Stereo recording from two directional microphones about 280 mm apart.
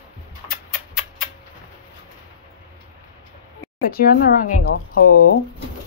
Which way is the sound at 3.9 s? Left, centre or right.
Left.